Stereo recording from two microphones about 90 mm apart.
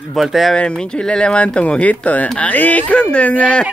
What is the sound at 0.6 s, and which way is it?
Speech, 10° left (ahead or behind).